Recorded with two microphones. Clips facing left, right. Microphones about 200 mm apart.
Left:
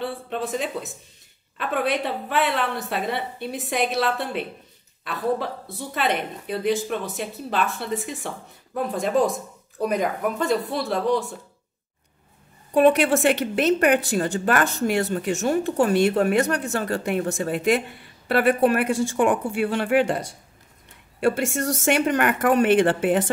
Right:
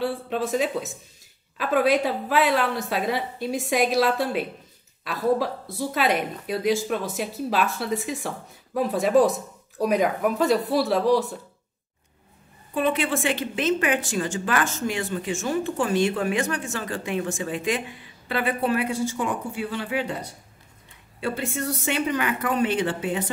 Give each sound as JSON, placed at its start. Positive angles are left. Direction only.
{"t": 0.0, "sound": "a woman's voice", "side_deg": 0}
{"t": 13.2, "sound": "a woman's voice", "side_deg": 70}
{"t": 15.5, "sound": "speech", "side_deg": 40}
{"t": 16.3, "sound": "a woman's voice", "side_deg": 65}
{"t": 17.2, "sound": "speech", "side_deg": 40}
{"t": 18.3, "sound": "speech", "side_deg": 70}
{"t": 22.1, "sound": "a woman's voice", "side_deg": 50}